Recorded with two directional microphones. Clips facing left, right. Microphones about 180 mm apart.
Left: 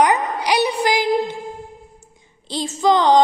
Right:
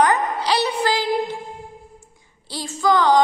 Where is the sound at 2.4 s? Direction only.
20° left (ahead or behind).